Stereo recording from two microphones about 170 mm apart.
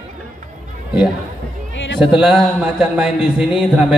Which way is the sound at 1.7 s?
90° left.